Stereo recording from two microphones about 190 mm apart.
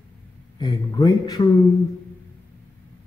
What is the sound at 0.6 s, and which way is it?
Speech, 20° left (ahead or behind).